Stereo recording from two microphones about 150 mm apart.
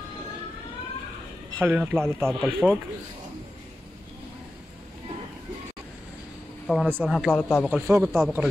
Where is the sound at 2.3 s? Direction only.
Centre (ahead or behind).